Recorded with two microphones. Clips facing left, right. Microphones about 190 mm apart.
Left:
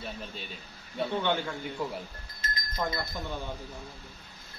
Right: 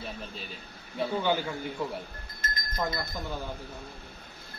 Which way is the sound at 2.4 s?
50° right (ahead or behind).